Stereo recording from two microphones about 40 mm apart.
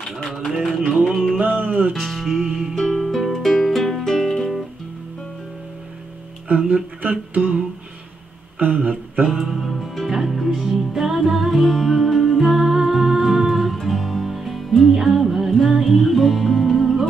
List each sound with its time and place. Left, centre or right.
0.7 s music: centre
1.6 s music: right
1.9 s music: centre
2.4 s music: centre
2.7 s music: centre
4.1 s guitar: centre
6.5 s a sound: right
8.5 s a sound: right
9.2 s music: centre